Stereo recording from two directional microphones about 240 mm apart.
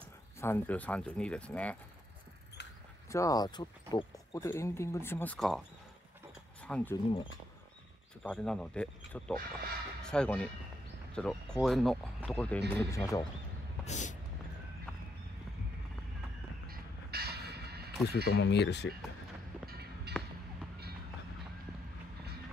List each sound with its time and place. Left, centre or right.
0.4 s speech: centre
3.1 s speech: centre
6.6 s speech: centre
8.2 s speech: centre
13.8 s vehicle: left
16.6 s music: right
18.1 s speech: left
19.7 s train: right